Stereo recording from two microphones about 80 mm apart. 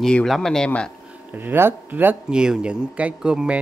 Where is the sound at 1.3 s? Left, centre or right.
Right.